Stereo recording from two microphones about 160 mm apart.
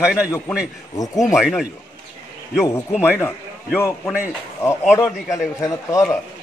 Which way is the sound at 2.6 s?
15° left (ahead or behind).